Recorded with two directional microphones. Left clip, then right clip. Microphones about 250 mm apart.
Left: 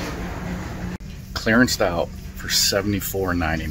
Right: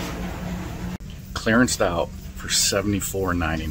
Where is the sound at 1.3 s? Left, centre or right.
Centre.